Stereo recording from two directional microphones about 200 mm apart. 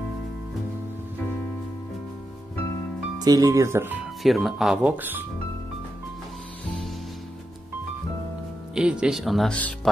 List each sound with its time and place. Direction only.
3.2 s speech: 20° right (ahead or behind)
8.7 s speech: 5° right (ahead or behind)